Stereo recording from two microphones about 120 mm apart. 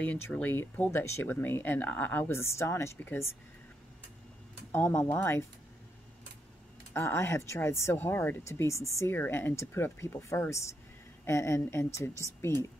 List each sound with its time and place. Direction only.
0.0 s speech: 10° left (ahead or behind)
4.7 s speech: 20° left (ahead or behind)
6.9 s speech: 20° left (ahead or behind)